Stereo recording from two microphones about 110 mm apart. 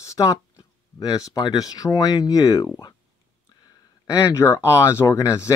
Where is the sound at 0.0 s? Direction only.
30° left (ahead or behind).